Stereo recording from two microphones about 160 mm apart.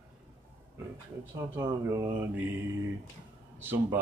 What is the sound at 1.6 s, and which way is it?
Speech, 20° right (ahead or behind).